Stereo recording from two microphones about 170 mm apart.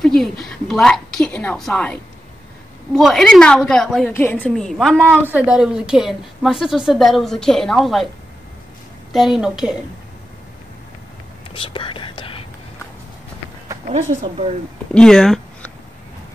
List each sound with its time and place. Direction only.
0.0 s a woman's voice: 5° left (ahead or behind)
4.1 s a woman's voice: 10° left (ahead or behind)
5.1 s a woman's voice: 10° right (ahead or behind)
9.1 s a woman's voice: centre (ahead or behind)
11.5 s whispering: 30° left (ahead or behind)
13.9 s speech: 50° right (ahead or behind)
15.0 s speech: 5° left (ahead or behind)